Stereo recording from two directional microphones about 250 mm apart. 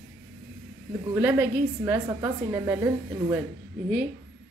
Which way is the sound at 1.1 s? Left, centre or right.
Centre.